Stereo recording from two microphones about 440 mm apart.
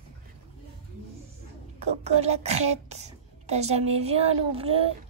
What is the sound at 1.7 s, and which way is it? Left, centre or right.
Speech, centre.